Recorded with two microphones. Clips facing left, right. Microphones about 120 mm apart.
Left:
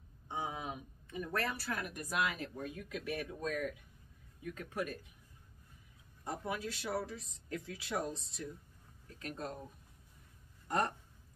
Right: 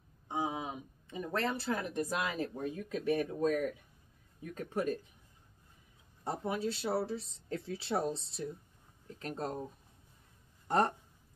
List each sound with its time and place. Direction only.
0.3 s speech: 20° right (ahead or behind)
6.2 s speech: 30° right (ahead or behind)